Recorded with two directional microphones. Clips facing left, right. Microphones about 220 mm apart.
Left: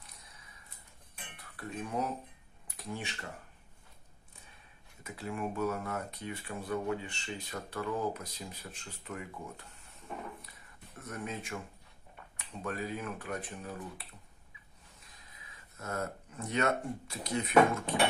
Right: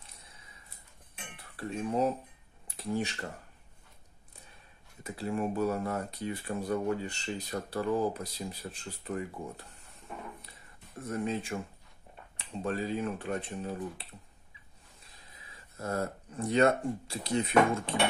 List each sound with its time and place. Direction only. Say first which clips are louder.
1.6 s speech: right 6 dB; 30° right (ahead or behind)
5.0 s speech: right 5 dB; 35° right (ahead or behind)
11.0 s speech: right 7 dB; 30° right (ahead or behind)
15.8 s speech: right 4 dB; 30° right (ahead or behind)